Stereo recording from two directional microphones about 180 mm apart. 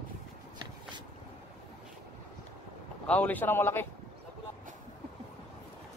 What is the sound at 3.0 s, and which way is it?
Speech, 10° left (ahead or behind).